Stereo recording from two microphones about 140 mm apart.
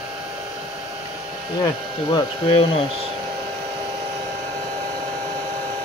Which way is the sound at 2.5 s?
40° left (ahead or behind).